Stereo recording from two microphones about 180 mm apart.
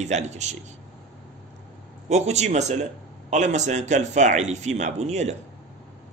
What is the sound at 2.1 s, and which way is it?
A man's voice, 40° right (ahead or behind).